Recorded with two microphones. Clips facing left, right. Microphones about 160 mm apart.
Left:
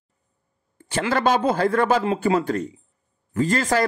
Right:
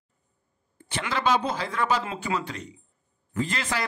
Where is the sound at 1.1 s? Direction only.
50° left (ahead or behind).